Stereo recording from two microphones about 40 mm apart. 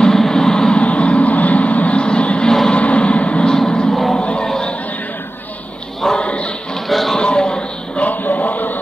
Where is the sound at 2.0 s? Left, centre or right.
Left.